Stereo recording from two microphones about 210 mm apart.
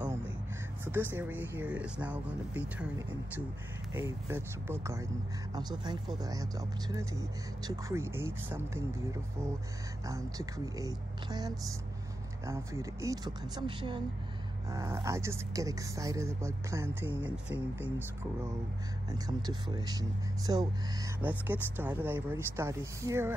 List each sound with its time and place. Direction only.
0.9 s speech: 10° right (ahead or behind)
6.1 s speech: 15° right (ahead or behind)
19.0 s speech: 20° right (ahead or behind)